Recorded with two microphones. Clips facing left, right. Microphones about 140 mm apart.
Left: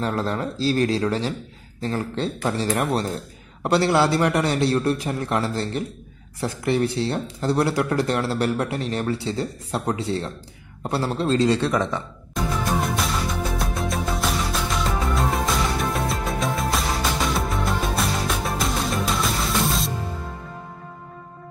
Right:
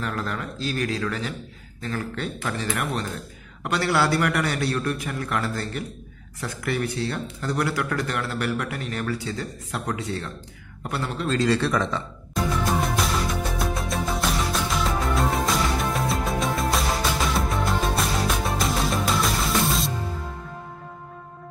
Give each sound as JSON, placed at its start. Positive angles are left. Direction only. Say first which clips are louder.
{"t": 0.0, "sound": "speech", "louder": "left 5 dB", "side_deg": 30}
{"t": 12.8, "sound": "music", "louder": "even", "side_deg": 0}